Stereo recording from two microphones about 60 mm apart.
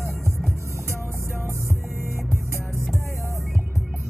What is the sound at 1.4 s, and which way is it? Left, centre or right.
Hum, right.